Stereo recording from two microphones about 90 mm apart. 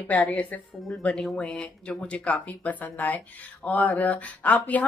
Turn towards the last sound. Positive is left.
turn(degrees=15)  # may be behind; listen again after turning